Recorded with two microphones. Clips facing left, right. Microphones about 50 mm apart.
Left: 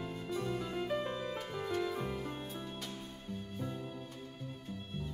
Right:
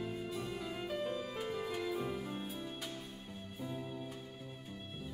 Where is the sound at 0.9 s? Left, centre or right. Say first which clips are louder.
Even; centre.